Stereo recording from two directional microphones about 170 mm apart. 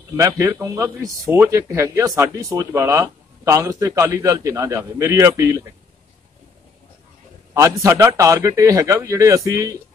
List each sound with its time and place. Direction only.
0.4 s speech: 15° right (ahead or behind)
7.5 s a man's voice: 15° right (ahead or behind)